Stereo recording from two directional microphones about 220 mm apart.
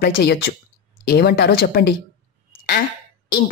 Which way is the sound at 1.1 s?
45° left (ahead or behind).